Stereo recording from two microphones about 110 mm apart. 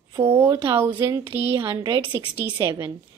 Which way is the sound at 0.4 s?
20° right (ahead or behind).